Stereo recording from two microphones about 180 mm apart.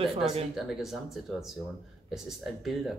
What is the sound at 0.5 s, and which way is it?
Speech, centre (ahead or behind).